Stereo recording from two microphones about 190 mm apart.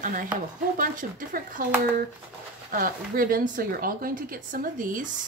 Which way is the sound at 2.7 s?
45° right (ahead or behind).